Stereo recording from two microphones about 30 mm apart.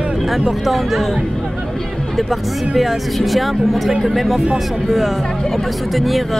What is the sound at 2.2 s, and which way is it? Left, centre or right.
Speech, centre.